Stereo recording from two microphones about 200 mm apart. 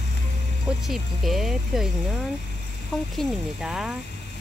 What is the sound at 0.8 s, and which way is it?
Speech, centre (ahead or behind).